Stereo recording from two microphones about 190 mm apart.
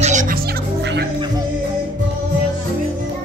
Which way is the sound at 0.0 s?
40° right (ahead or behind).